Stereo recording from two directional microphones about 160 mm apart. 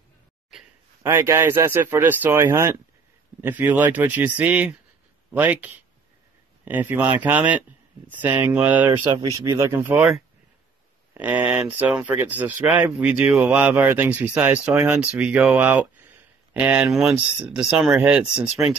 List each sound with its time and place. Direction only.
1.0 s speech: 15° right (ahead or behind)
8.9 s speech: 25° right (ahead or behind)
11.1 s speech: 10° right (ahead or behind)